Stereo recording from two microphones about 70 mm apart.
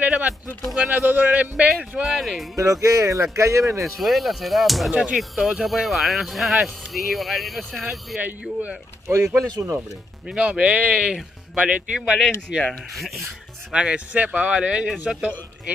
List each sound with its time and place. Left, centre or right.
0.0 s a sound: right
2.0 s a sound: centre
2.5 s speech: right
3.8 s speech: centre
8.2 s speech: right
9.1 s speech: right
10.2 s speech: centre
12.9 s speech: centre
13.7 s speech: centre